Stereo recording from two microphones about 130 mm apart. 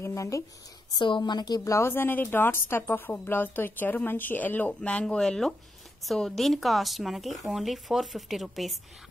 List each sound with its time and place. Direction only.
0.0 s speech: 25° left (ahead or behind)
0.9 s a woman's voice: 40° left (ahead or behind); by 8.7 s centre (ahead or behind)